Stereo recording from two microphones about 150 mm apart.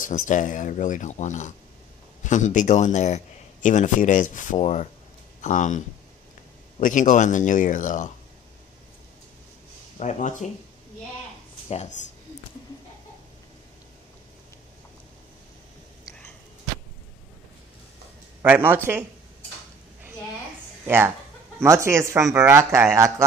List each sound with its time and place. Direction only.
0.0 s speech: 60° left (ahead or behind)
9.9 s speech: 50° left (ahead or behind)
11.7 s speech: 50° left (ahead or behind)
18.4 s speech: 15° right (ahead or behind)
20.8 s speech: 15° right (ahead or behind)